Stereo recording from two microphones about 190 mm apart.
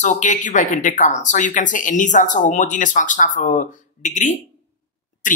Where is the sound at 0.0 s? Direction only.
40° left (ahead or behind).